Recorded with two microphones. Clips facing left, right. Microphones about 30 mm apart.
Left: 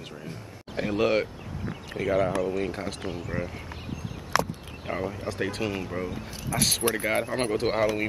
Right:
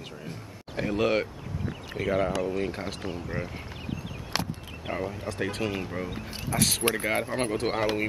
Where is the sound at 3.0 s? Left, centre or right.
Centre.